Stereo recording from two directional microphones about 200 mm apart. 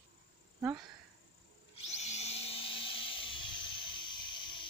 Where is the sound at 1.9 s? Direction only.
35° left (ahead or behind).